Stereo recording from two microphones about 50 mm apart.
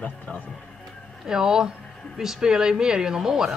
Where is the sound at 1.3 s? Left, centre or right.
Centre.